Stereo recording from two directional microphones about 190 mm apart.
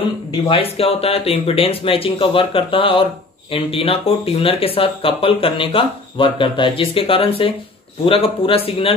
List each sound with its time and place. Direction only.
0.5 s speech: 30° left (ahead or behind)